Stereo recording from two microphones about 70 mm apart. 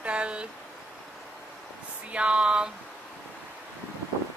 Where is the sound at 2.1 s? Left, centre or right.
Centre.